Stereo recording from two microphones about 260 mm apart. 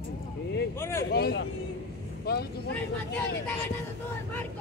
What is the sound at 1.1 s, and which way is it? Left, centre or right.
Vehicle, left.